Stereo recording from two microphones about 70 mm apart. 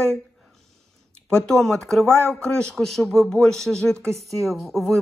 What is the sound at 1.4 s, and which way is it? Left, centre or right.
Speech, centre.